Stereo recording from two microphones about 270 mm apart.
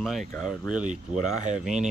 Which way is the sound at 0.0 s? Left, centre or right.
Centre.